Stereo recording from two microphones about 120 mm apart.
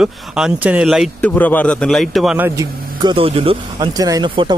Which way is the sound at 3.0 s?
45° right (ahead or behind).